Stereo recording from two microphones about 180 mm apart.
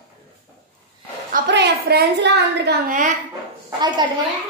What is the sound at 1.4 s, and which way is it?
A woman's voice, 70° right (ahead or behind).